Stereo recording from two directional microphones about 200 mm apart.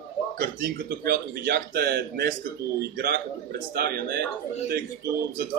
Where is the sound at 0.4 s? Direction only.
50° right (ahead or behind).